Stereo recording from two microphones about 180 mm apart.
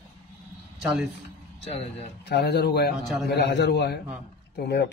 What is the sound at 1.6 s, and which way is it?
Speech, 35° left (ahead or behind).